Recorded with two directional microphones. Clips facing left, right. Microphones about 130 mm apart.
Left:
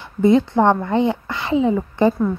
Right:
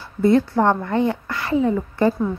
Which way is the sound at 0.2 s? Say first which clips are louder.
Left 2 dB; 20° left (ahead or behind).